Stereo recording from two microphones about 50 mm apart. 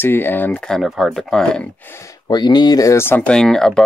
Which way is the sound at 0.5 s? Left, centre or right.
Centre.